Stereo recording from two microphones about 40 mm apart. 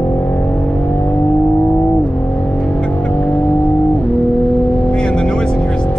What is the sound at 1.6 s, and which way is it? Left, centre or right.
Vehicle, left.